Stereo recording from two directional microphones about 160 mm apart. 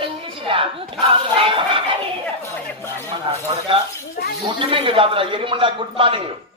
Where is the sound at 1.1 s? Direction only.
30° right (ahead or behind).